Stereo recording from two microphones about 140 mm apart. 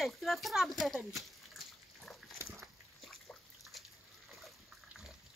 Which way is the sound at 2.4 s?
20° right (ahead or behind).